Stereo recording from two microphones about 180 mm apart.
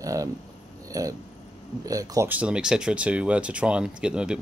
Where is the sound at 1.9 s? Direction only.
20° right (ahead or behind).